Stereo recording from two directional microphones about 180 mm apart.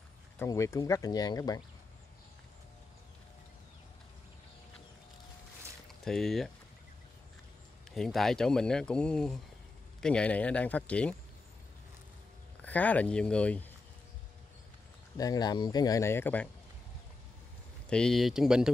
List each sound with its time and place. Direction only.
0.4 s speech: 15° left (ahead or behind)
6.0 s speech: centre (ahead or behind)
7.9 s speech: centre (ahead or behind)
12.6 s speech: 10° left (ahead or behind)
15.1 s speech: 20° left (ahead or behind)
17.8 s speech: 5° left (ahead or behind)